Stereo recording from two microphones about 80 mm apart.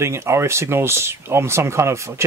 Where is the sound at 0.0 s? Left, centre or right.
Right.